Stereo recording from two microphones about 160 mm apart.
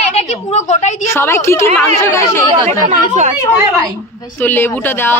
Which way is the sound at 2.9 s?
50° right (ahead or behind).